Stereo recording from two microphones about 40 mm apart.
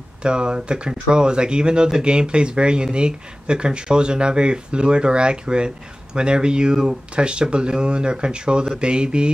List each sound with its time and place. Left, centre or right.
0.2 s speech: right